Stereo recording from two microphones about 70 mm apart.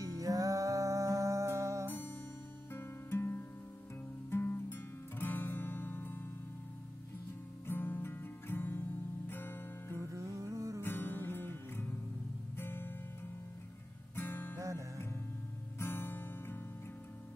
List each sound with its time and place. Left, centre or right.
0.0 s music: right
1.9 s music: left
7.6 s music: left
9.9 s humming: right
10.8 s music: left
12.5 s guitar: left
14.1 s music: left
15.8 s music: left